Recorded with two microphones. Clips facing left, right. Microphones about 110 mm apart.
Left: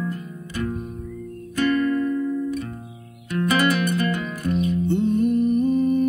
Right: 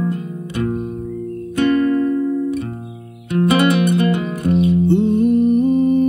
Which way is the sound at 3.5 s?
20° right (ahead or behind).